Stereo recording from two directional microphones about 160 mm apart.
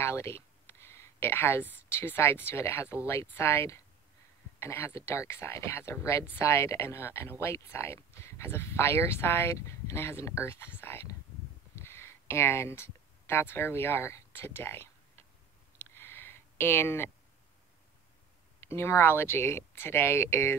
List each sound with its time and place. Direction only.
0.0 s a woman's voice: 15° left (ahead or behind)
11.7 s a sound: 15° left (ahead or behind)
18.6 s speech: 15° left (ahead or behind)